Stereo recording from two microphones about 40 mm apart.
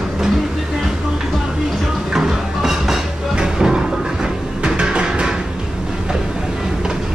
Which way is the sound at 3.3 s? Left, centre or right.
Centre.